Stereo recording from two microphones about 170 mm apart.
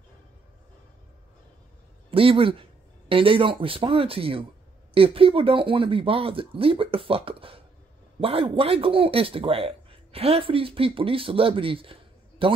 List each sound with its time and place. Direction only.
2.0 s a man's voice: 35° right (ahead or behind)